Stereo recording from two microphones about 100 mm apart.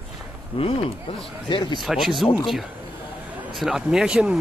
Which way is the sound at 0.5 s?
65° left (ahead or behind).